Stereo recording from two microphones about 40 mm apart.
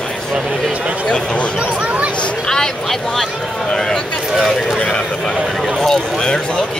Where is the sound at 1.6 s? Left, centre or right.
Right.